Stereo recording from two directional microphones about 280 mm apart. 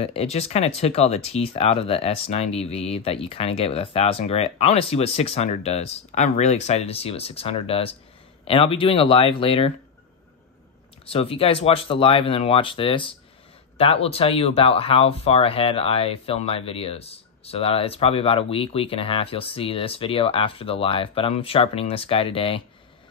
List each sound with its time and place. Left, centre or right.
0.0 s speech: left
11.1 s speech: left